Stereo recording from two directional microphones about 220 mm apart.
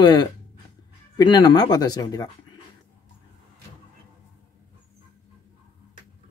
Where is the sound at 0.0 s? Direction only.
20° left (ahead or behind).